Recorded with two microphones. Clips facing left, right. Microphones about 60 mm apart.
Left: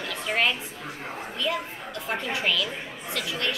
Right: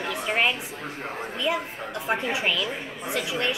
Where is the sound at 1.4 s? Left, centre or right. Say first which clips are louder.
Right 3 dB; right.